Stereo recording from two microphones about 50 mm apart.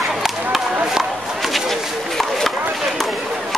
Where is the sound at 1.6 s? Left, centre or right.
Centre.